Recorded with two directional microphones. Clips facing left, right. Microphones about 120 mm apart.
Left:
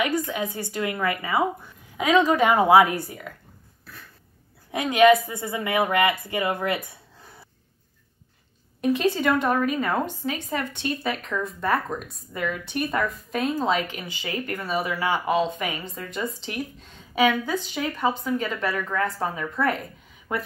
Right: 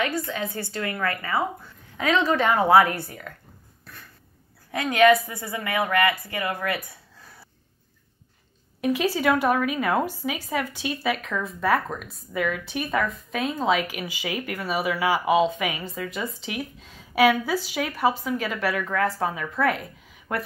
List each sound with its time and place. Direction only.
0.0 s a woman's voice: 15° left (ahead or behind)
4.6 s a woman's voice: 15° left (ahead or behind)
8.8 s a woman's voice: 5° right (ahead or behind)